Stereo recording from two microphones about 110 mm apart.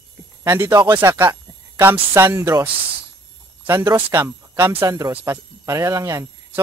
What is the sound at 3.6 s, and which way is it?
Speech, 20° right (ahead or behind).